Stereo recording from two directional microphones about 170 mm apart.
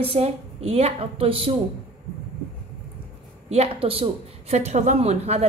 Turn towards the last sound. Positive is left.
turn(degrees=-40)  # may be behind; listen again after turning